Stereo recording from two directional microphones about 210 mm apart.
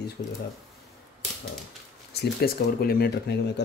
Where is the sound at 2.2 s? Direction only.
45° left (ahead or behind).